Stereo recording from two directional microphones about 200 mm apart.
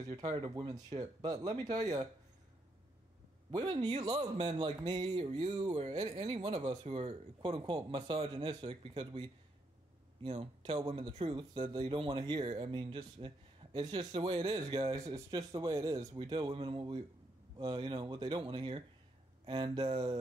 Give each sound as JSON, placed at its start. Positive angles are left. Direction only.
{"t": 0.0, "sound": "speech", "side_deg": -20}
{"t": 3.5, "sound": "speech", "side_deg": -25}